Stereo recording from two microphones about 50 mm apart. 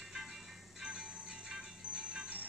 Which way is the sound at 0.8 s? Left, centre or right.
Centre.